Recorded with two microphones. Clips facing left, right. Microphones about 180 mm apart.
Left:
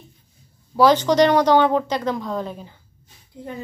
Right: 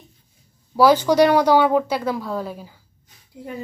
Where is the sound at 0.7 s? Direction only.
10° right (ahead or behind).